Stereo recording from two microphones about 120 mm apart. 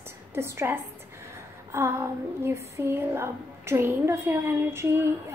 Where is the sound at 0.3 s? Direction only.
20° right (ahead or behind).